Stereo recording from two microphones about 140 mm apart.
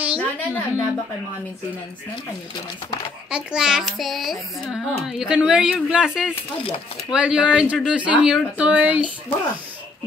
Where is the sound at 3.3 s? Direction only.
5° right (ahead or behind).